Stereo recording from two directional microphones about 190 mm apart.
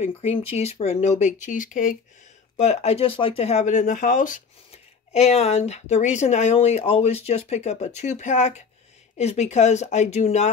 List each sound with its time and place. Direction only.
0.0 s speech: 30° left (ahead or behind)